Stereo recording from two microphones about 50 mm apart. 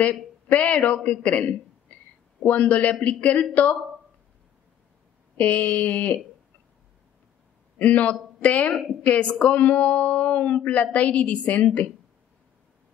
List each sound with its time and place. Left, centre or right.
0.0 s a woman's voice: left
5.4 s a sound: left
7.8 s speech: left